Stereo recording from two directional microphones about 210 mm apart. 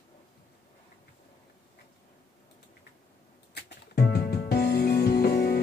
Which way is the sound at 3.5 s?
50° left (ahead or behind).